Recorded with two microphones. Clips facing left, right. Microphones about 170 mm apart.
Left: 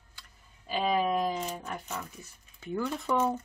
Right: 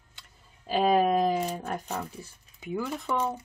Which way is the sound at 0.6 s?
45° right (ahead or behind).